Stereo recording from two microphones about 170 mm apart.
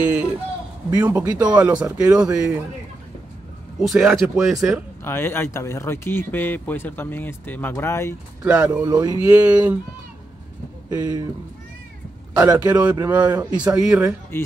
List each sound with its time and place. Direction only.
0.8 s speech: 10° right (ahead or behind)
3.8 s speech: centre (ahead or behind)
5.0 s speech: 15° left (ahead or behind)
8.5 s speech: 5° right (ahead or behind)
8.8 s speech: 20° right (ahead or behind)
9.2 s speech: 10° right (ahead or behind)
10.9 s speech: 20° right (ahead or behind)
12.4 s speech: 20° right (ahead or behind)
14.3 s speech: 15° left (ahead or behind)